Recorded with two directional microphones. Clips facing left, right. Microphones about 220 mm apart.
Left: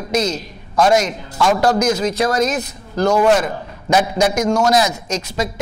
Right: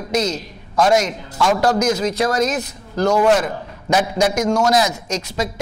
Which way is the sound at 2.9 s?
30° left (ahead or behind).